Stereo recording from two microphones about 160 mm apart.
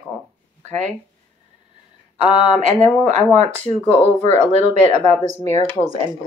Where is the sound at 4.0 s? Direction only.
45° right (ahead or behind).